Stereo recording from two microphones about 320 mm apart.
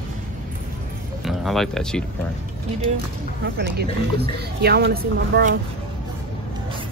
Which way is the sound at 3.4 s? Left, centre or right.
Right.